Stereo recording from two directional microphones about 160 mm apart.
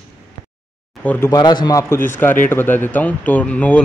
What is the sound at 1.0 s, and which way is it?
Speech, 15° left (ahead or behind).